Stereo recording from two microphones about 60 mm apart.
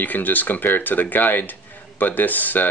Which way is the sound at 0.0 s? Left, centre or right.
Left.